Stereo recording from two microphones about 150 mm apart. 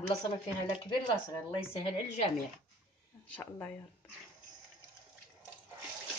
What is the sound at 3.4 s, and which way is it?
Speech, 15° left (ahead or behind).